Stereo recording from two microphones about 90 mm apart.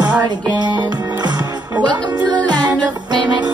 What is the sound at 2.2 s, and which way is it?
Music, 50° right (ahead or behind).